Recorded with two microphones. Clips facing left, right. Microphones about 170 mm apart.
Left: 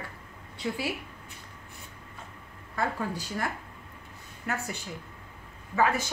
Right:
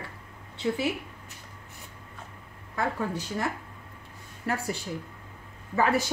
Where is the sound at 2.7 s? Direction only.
20° right (ahead or behind).